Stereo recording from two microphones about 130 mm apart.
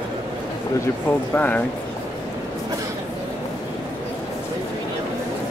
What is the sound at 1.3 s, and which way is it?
Speech, 15° left (ahead or behind).